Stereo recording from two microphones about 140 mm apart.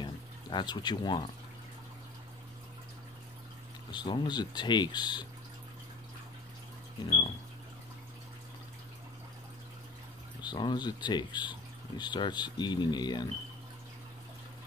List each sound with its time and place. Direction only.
0.0 s a sound: 35° left (ahead or behind)
3.9 s speech: 30° left (ahead or behind)
10.4 s speech: 30° left (ahead or behind)